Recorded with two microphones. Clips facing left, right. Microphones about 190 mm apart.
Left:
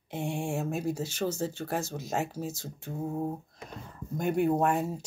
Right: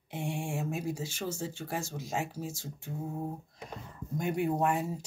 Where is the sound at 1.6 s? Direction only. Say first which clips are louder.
Left 4 dB; 45° left (ahead or behind).